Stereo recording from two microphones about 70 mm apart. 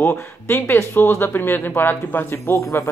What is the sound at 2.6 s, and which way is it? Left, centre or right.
Speech, left.